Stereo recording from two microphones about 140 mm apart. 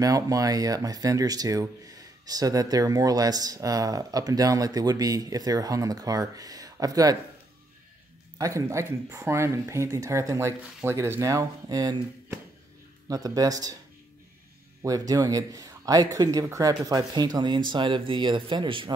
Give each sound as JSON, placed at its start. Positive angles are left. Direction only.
{"t": 0.0, "sound": "speech", "side_deg": -25}
{"t": 8.4, "sound": "speech", "side_deg": -25}
{"t": 14.8, "sound": "speech", "side_deg": -25}